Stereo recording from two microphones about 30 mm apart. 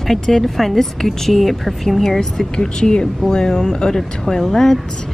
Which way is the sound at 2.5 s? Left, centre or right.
Left.